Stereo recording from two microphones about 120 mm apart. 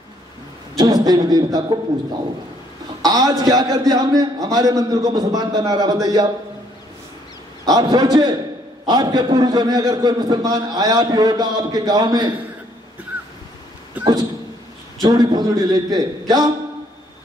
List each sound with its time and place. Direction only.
0.7 s a man's voice: 35° right (ahead or behind)
3.0 s a man's voice: 30° right (ahead or behind)
7.6 s a man's voice: 35° right (ahead or behind)
15.0 s a man's voice: 35° right (ahead or behind)